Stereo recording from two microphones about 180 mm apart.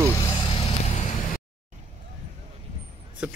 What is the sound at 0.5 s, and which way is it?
Vehicle, 35° left (ahead or behind).